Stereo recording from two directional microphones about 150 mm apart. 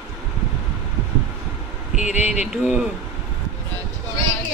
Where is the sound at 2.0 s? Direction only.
50° left (ahead or behind).